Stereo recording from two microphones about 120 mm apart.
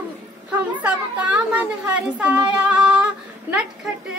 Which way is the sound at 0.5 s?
10° right (ahead or behind).